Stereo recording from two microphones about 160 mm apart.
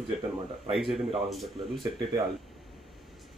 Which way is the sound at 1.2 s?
Centre (ahead or behind).